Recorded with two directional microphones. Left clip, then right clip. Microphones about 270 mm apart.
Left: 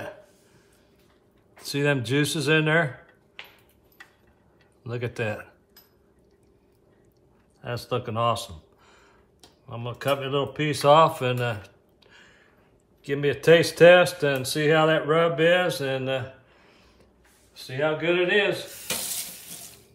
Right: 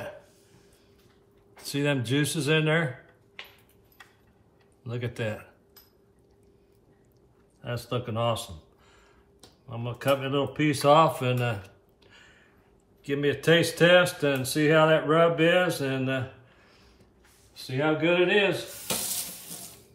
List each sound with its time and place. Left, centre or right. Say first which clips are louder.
1.7 s speech: left 3 dB; centre
4.8 s speech: left 3 dB; centre
7.6 s speech: left 3 dB; centre
8.8 s a sound: left 3 dB; centre
9.7 s speech: even; centre
17.6 s speech: even; centre